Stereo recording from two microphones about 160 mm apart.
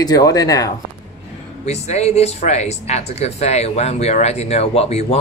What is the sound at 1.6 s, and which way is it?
Speech, 45° left (ahead or behind).